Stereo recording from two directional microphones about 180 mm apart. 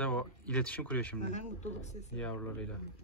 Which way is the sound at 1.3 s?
40° left (ahead or behind).